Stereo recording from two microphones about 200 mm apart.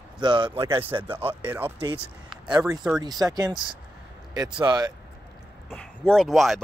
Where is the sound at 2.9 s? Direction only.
20° right (ahead or behind).